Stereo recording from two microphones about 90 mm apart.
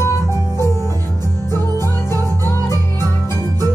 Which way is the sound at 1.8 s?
30° left (ahead or behind).